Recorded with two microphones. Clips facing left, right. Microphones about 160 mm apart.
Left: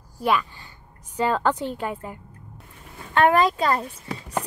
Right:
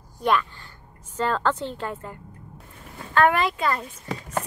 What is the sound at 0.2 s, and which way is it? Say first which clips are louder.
A woman's voice: even; 5° left (ahead or behind).